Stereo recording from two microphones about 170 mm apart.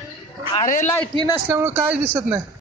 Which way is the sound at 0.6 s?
50° left (ahead or behind).